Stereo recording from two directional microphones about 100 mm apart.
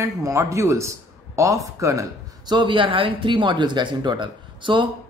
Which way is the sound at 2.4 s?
50° right (ahead or behind).